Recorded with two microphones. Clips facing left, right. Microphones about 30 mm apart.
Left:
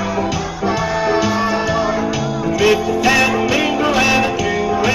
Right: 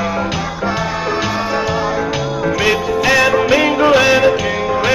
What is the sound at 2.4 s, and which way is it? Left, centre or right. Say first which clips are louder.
Music: left 1 dB; right.